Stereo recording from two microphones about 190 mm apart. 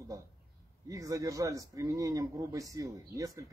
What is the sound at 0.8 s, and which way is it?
Speech, 15° right (ahead or behind).